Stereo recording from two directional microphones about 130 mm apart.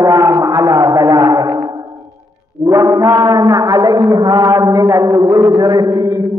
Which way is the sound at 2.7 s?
25° right (ahead or behind).